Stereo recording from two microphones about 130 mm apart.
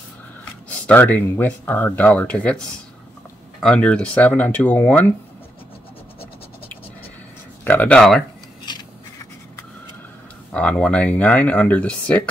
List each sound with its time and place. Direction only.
0.8 s speech: 10° left (ahead or behind)
3.6 s speech: 5° left (ahead or behind)
7.6 s speech: 10° left (ahead or behind)
8.7 s a sound: 35° left (ahead or behind)
10.5 s speech: 10° left (ahead or behind)